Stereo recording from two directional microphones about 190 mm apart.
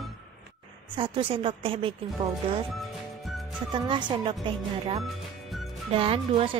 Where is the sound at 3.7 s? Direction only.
25° right (ahead or behind).